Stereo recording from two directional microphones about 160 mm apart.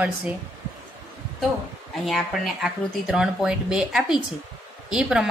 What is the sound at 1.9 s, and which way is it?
Speech, centre (ahead or behind).